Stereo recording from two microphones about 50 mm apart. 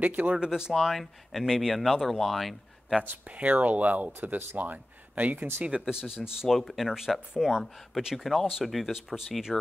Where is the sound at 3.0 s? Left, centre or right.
Right.